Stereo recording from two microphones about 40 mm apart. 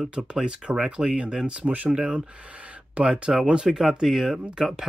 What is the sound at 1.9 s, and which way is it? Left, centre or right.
Speech, centre.